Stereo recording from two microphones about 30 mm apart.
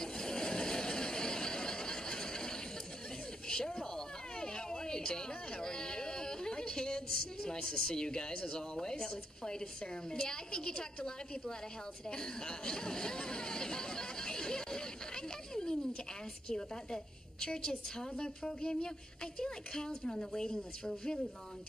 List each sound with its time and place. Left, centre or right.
0.0 s vehicle: left
3.4 s a sound: left
7.6 s a woman's voice: left
12.1 s chatter: left
16.4 s a woman's voice: left